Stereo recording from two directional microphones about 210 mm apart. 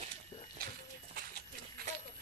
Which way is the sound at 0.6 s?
45° right (ahead or behind).